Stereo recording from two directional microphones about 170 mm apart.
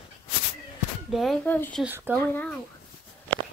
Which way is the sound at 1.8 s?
10° right (ahead or behind).